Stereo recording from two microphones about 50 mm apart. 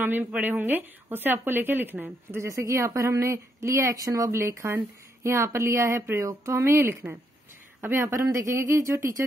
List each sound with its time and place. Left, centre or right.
0.0 s speech: right
2.4 s speech: right